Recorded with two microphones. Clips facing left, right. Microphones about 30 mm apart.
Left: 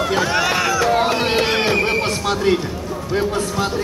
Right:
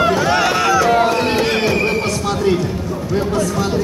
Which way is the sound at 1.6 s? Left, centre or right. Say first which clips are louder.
Right 1 dB; left.